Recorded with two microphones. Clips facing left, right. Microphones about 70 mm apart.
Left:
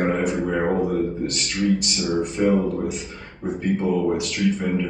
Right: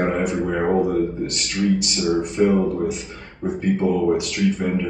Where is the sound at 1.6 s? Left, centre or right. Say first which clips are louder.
Right 1 dB; centre.